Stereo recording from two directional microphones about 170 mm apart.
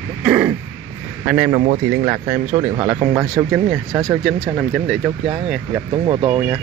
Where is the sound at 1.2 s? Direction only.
10° right (ahead or behind).